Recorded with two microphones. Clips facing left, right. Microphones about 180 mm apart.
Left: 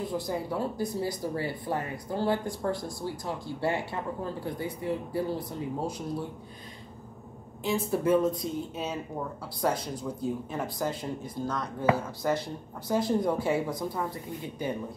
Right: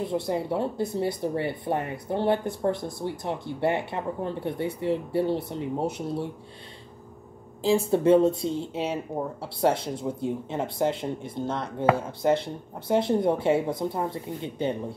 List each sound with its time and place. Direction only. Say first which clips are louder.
0.0 s speech: right 4 dB; 25° right (ahead or behind)
7.6 s speech: right 6 dB; 30° right (ahead or behind)